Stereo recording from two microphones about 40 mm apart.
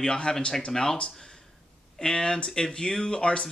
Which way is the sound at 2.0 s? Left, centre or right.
Centre.